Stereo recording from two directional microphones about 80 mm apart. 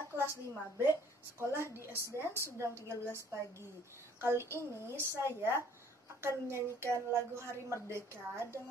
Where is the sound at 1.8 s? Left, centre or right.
Right.